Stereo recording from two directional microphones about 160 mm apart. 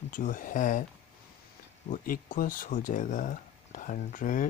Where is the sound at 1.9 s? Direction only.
60° left (ahead or behind).